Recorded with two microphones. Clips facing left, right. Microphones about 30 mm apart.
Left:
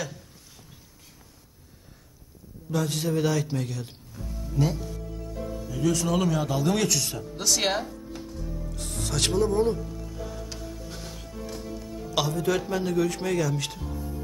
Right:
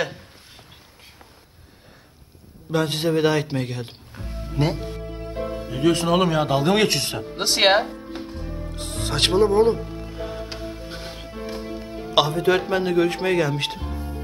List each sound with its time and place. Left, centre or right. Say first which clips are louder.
2.7 s music: right 6 dB; right